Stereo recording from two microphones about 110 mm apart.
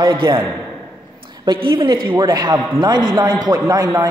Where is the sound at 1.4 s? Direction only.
40° right (ahead or behind).